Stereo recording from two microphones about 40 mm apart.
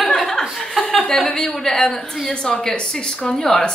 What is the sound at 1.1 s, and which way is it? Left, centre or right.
A woman's voice, centre.